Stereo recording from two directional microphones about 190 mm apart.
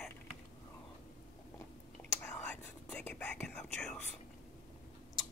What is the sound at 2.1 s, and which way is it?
Speech, 10° left (ahead or behind).